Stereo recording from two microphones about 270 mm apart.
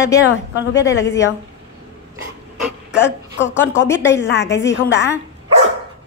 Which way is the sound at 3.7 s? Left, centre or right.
Centre.